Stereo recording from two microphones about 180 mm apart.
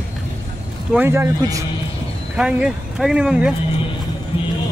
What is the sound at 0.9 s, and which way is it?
Speech, 15° right (ahead or behind).